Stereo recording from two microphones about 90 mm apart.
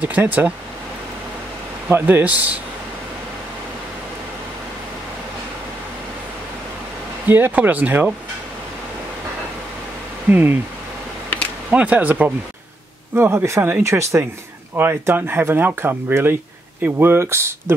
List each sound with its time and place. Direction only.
0.0 s speech: 20° right (ahead or behind)
1.9 s speech: 25° right (ahead or behind)
7.2 s speech: 20° right (ahead or behind)
10.3 s speech: 25° right (ahead or behind)
11.7 s speech: 15° right (ahead or behind)
13.1 s speech: 30° right (ahead or behind)